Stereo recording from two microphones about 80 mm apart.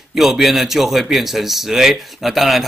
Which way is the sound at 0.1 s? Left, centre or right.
Centre.